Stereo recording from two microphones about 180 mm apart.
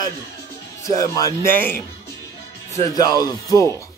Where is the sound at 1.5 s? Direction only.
50° right (ahead or behind).